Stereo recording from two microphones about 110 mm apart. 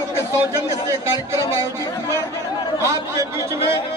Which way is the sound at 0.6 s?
25° right (ahead or behind).